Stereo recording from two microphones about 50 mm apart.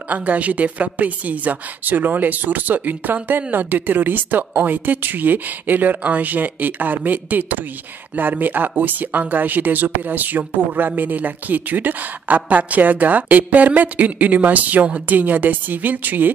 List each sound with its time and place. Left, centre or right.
0.1 s speech: right